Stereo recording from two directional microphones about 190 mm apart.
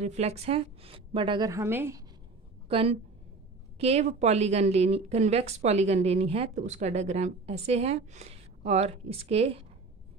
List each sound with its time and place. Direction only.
0.0 s a woman's voice: 35° right (ahead or behind); by 2.0 s 15° right (ahead or behind)
2.7 s a woman's voice: 30° right (ahead or behind)